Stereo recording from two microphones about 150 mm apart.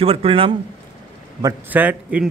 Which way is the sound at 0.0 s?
40° right (ahead or behind).